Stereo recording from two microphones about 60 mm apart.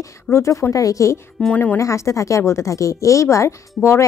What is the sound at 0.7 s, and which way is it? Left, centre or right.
Speech, left.